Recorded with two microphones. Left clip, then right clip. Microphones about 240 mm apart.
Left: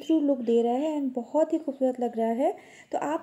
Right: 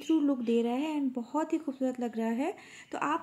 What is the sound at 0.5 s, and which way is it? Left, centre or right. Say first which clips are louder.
Speech: left 6 dB; right.